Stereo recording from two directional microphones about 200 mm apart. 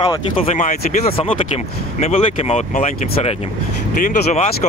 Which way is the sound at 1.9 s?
35° left (ahead or behind).